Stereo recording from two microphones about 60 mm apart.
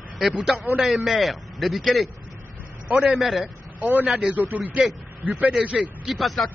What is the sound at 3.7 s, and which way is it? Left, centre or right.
Speech, right.